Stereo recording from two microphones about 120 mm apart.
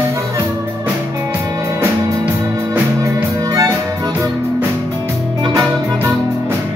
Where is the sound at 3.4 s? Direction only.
30° right (ahead or behind).